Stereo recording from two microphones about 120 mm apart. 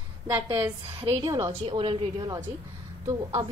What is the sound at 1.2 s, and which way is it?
Speech, 30° right (ahead or behind).